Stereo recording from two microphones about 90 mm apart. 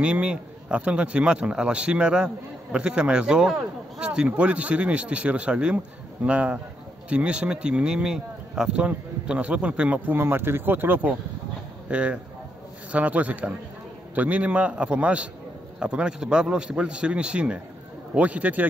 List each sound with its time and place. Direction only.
0.0 s speech: 15° right (ahead or behind)